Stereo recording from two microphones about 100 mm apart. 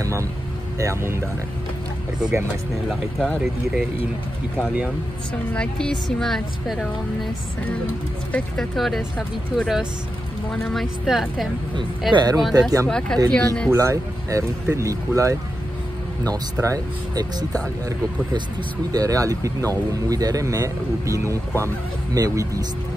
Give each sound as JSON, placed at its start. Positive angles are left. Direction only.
{"t": 0.0, "sound": "speech", "side_deg": -30}
{"t": 2.9, "sound": "speech", "side_deg": 0}
{"t": 5.5, "sound": "speech", "side_deg": 10}
{"t": 8.5, "sound": "speech", "side_deg": 0}
{"t": 12.1, "sound": "speech", "side_deg": -45}
{"t": 12.4, "sound": "speech", "side_deg": 0}
{"t": 13.7, "sound": "speech", "side_deg": -30}
{"t": 16.6, "sound": "speech", "side_deg": -35}
{"t": 18.9, "sound": "speech", "side_deg": -35}